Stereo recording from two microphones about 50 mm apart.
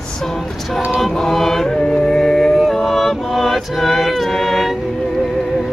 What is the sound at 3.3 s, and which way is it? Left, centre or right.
Choir, centre.